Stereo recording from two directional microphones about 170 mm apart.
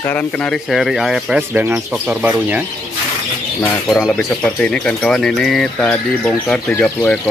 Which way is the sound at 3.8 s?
Centre (ahead or behind).